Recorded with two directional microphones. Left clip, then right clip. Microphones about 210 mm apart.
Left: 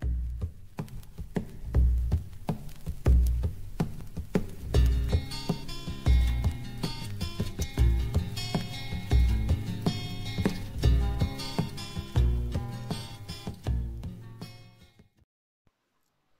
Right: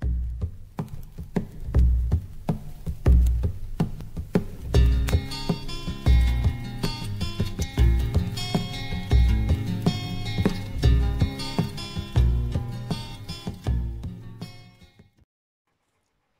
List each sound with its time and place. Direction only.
0.0 s music: centre (ahead or behind)
1.3 s a sound: centre (ahead or behind)
3.0 s music: centre (ahead or behind)